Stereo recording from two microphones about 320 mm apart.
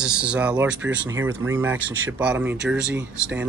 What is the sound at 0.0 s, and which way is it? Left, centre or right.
Speech, centre.